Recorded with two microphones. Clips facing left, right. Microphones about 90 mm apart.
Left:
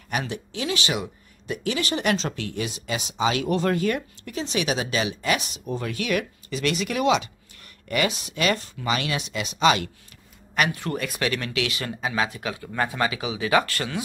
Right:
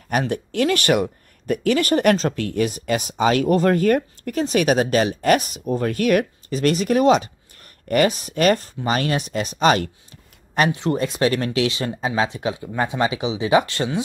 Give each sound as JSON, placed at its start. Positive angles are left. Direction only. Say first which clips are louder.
{"t": 0.1, "sound": "speech", "louder": "right 7 dB", "side_deg": -50}
{"t": 10.5, "sound": "speech", "louder": "right 5 dB", "side_deg": -25}